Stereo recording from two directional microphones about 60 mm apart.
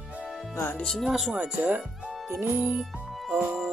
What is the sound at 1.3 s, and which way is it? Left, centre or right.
Speech, right.